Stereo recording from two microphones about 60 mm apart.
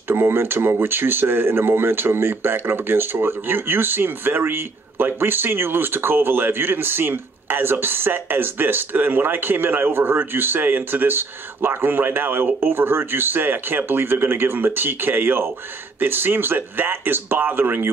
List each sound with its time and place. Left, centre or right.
0.1 s speech: right